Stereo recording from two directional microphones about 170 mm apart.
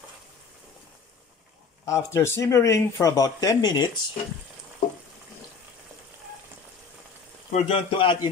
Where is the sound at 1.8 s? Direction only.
15° left (ahead or behind).